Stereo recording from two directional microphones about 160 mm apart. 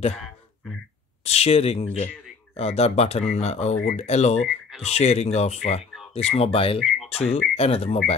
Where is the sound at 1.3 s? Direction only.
40° left (ahead or behind).